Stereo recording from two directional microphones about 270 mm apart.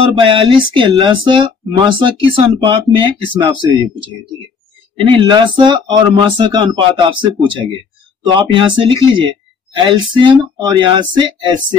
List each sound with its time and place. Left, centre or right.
0.0 s speech: centre
4.9 s speech: centre